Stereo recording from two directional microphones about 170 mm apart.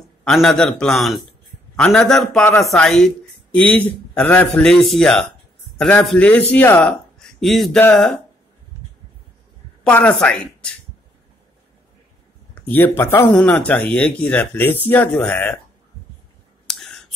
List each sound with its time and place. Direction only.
0.2 s a man's voice: centre (ahead or behind)
9.8 s speech: 10° left (ahead or behind)
12.5 s speech: 10° left (ahead or behind)
16.6 s clicking: centre (ahead or behind)